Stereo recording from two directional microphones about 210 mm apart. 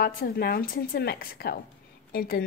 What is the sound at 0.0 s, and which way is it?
Speech, 45° left (ahead or behind).